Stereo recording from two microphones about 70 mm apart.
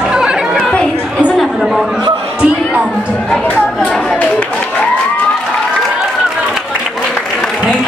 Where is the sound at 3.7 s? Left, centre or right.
Centre.